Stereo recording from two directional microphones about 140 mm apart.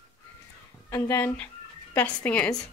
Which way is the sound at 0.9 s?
20° left (ahead or behind).